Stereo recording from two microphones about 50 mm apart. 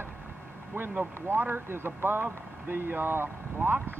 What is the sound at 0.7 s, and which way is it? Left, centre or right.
Speech, right.